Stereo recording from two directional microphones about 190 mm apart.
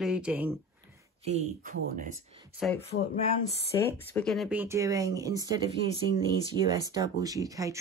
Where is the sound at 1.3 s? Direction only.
40° right (ahead or behind).